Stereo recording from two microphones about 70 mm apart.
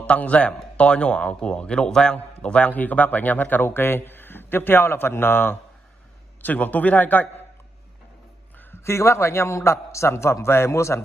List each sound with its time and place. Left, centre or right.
0.0 s a man's voice: centre
8.8 s speech: left